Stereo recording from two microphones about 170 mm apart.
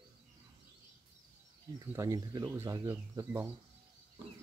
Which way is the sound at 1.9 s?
15° right (ahead or behind).